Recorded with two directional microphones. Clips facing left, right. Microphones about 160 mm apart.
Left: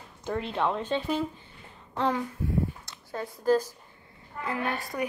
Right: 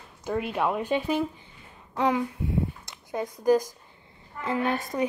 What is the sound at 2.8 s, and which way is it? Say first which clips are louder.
A woman's voice: right 4 dB; 15° right (ahead or behind).